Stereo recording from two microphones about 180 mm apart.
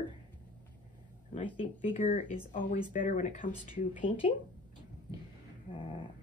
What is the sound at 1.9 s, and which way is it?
Speech, 45° left (ahead or behind).